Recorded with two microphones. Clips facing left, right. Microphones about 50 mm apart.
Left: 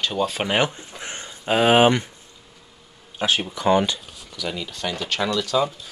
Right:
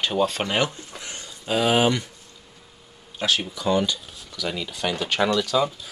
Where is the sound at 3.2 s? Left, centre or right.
Left.